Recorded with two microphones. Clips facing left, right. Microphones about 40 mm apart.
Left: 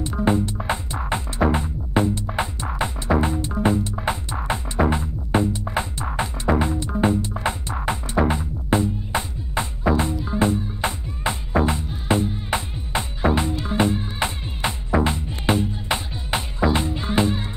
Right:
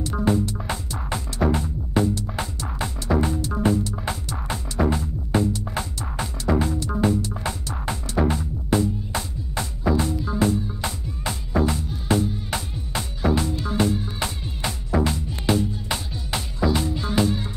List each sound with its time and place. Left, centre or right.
0.2 s music: left